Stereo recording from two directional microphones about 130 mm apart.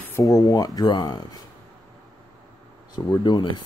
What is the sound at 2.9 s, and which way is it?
Speech, 35° left (ahead or behind).